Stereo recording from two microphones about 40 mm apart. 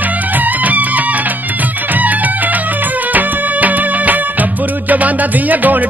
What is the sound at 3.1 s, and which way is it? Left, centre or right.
Music, right.